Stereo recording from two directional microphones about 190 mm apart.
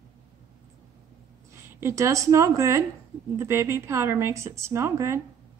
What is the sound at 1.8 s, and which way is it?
A woman's voice, 15° right (ahead or behind).